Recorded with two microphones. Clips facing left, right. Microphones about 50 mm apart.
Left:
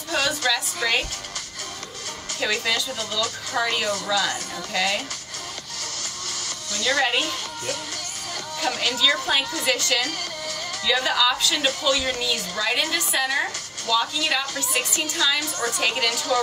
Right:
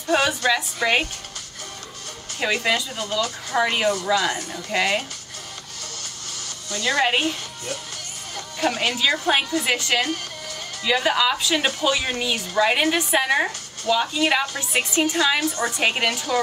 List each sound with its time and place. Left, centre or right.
0.1 s a woman's voice: right
2.4 s a woman's voice: right
6.7 s a woman's voice: right
8.5 s a woman's voice: right